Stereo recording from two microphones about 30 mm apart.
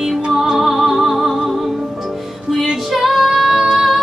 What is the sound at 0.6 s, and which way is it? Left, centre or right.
Music, centre.